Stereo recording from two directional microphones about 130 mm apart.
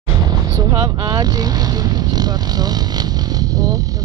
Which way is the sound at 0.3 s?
25° right (ahead or behind).